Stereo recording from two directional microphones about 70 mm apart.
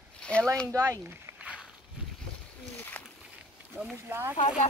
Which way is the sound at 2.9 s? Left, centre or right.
Left.